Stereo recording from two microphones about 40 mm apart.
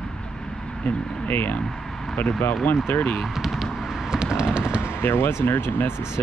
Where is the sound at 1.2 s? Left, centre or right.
Left.